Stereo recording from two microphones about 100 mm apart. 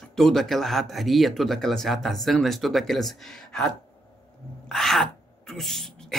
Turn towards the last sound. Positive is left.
turn(degrees=5)  # may be behind; listen again after turning